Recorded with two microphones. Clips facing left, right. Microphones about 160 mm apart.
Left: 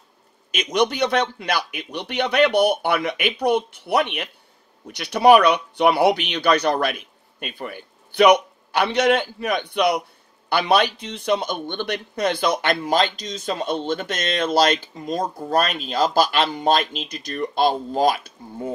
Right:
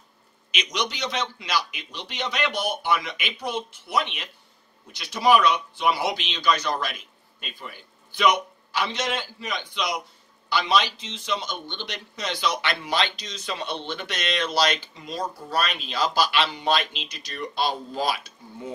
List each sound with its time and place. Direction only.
0.5 s a man's voice: 50° left (ahead or behind)